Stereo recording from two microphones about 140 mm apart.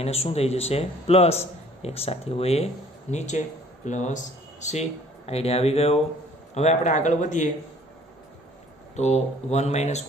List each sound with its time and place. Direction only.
0.0 s a man's voice: 45° left (ahead or behind); by 7.5 s 60° left (ahead or behind)
8.9 s a man's voice: 55° left (ahead or behind)